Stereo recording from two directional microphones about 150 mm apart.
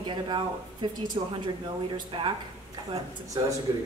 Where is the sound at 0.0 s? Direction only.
30° right (ahead or behind).